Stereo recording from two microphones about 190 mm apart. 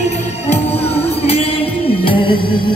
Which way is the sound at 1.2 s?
35° left (ahead or behind).